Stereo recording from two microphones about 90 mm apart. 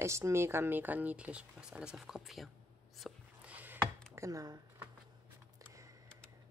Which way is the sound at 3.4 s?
20° right (ahead or behind).